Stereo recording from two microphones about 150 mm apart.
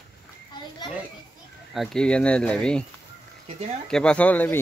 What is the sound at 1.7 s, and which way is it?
Speech, centre (ahead or behind).